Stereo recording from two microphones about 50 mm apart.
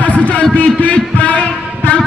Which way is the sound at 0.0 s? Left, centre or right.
Left.